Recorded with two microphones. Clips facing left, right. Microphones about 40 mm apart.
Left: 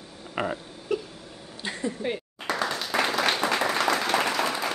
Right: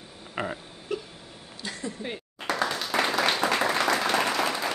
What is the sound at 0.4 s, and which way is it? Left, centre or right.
Burping, centre.